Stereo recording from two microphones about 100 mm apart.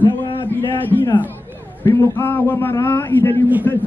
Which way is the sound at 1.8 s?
20° left (ahead or behind).